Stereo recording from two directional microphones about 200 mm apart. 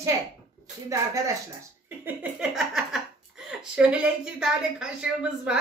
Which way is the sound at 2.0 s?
5° right (ahead or behind).